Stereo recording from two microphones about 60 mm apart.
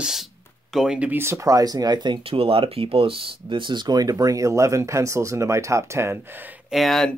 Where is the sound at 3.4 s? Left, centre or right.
Right.